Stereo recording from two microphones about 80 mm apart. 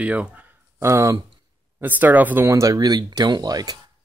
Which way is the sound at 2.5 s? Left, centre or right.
Right.